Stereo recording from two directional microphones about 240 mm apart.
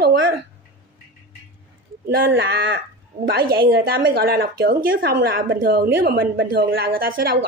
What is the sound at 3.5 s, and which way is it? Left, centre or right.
A woman's voice, right.